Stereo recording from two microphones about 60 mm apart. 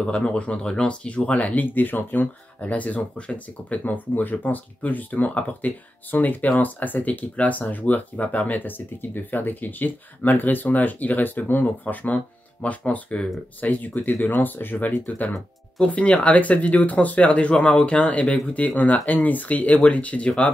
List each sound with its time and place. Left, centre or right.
0.0 s speech: centre